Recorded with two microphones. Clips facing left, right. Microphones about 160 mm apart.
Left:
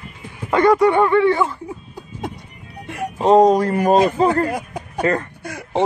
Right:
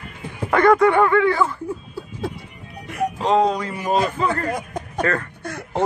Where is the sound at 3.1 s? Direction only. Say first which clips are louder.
Left 7 dB; 40° left (ahead or behind).